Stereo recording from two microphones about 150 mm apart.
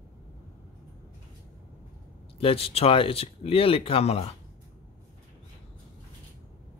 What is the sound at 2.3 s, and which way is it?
Speech, 40° left (ahead or behind).